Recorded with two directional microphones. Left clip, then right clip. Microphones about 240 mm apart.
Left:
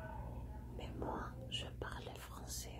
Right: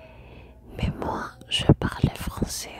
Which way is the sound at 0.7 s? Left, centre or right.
Right.